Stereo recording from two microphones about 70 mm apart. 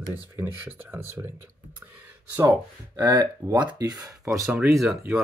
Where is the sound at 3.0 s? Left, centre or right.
Right.